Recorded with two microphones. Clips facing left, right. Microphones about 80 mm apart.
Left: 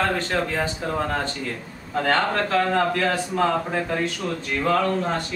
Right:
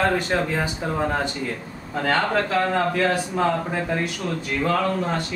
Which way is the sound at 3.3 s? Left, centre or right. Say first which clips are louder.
Left 1 dB; centre.